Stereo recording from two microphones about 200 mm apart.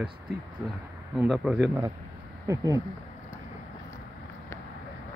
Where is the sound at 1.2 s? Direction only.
5° right (ahead or behind).